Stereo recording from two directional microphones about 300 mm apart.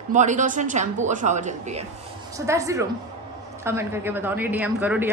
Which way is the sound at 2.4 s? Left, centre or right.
Centre.